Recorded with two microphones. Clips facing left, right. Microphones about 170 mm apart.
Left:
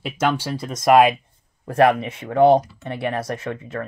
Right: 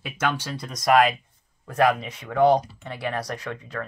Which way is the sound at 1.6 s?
60° left (ahead or behind).